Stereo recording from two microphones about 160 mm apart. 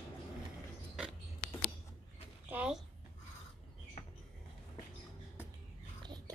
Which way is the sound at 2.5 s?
5° right (ahead or behind).